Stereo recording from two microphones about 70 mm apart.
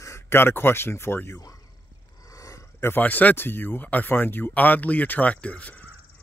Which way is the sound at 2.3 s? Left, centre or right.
Left.